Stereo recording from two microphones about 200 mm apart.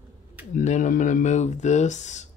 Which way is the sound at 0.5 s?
40° left (ahead or behind).